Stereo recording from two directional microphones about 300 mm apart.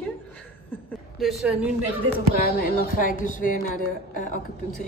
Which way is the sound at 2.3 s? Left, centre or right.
Left.